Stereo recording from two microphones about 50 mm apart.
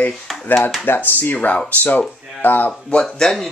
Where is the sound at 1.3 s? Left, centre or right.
Left.